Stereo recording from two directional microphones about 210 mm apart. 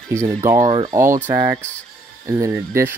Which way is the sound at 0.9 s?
15° right (ahead or behind).